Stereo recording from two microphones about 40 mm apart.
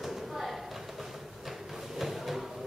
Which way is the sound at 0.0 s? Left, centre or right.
Centre.